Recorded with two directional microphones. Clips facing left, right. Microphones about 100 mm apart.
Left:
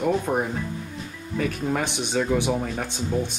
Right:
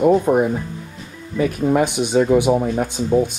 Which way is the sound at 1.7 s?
15° right (ahead or behind).